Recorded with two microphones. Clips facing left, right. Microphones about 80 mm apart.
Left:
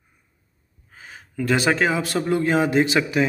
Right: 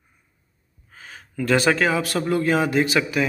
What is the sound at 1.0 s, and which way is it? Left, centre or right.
A man's voice, centre.